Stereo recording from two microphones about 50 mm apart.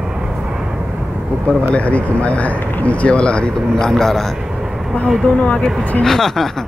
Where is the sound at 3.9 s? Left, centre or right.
Centre.